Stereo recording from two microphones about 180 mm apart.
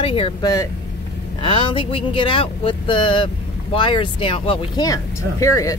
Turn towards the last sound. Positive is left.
turn(degrees=15)  # may be behind; listen again after turning